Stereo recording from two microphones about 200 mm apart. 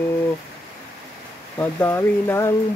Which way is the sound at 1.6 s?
10° left (ahead or behind).